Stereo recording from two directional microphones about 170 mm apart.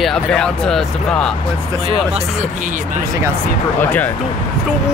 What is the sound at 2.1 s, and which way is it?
Speech, 50° right (ahead or behind).